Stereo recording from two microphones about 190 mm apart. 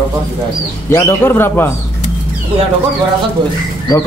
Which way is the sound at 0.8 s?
15° left (ahead or behind).